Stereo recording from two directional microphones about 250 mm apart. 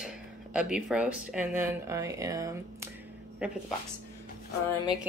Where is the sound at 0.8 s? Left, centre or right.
Centre.